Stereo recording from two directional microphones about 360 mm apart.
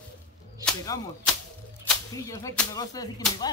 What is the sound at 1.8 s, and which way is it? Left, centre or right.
Speech, centre.